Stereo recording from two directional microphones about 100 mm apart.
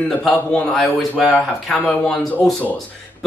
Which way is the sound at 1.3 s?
15° left (ahead or behind).